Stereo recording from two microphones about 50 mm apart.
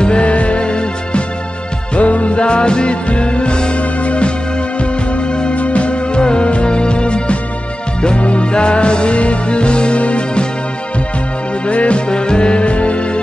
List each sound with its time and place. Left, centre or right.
0.0 s music: left
11.6 s music: left